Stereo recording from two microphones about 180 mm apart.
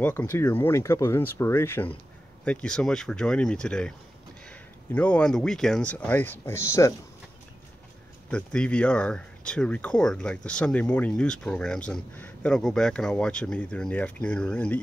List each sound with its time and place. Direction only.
0.0 s speech: 10° left (ahead or behind)
8.3 s speech: 5° left (ahead or behind)